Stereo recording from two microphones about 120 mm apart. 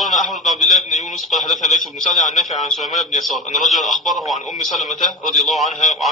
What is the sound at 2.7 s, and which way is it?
Speech, centre (ahead or behind).